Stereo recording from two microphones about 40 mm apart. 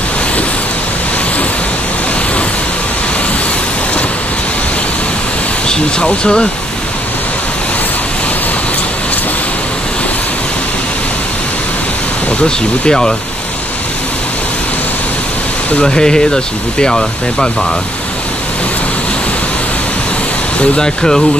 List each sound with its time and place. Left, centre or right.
5.7 s speech: left
12.4 s speech: centre
15.8 s speech: centre
20.7 s speech: centre